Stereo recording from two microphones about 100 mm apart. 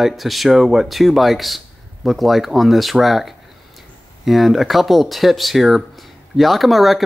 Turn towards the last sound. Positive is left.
turn(degrees=0)  # may be behind; listen again after turning